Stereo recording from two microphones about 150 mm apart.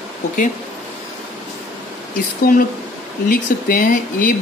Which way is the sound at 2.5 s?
70° left (ahead or behind).